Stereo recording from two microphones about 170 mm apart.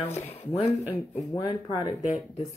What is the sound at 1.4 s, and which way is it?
Speech, 25° left (ahead or behind).